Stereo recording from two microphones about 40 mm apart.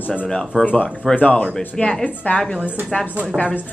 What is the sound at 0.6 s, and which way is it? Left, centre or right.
Speech, left.